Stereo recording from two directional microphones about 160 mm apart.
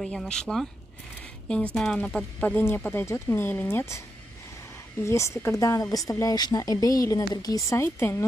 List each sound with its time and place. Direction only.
0.0 s speech: 5° left (ahead or behind)
5.0 s speech: 20° left (ahead or behind)